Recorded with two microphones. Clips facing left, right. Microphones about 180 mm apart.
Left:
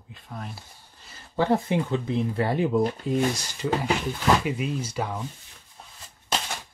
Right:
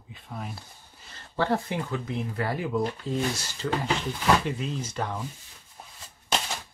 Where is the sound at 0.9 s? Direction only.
Centre (ahead or behind).